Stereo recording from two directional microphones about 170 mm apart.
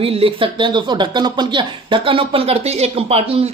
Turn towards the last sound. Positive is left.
turn(degrees=-35)  # may be behind; listen again after turning